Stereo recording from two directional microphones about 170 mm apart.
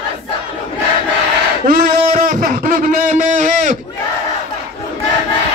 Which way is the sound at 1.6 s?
55° right (ahead or behind).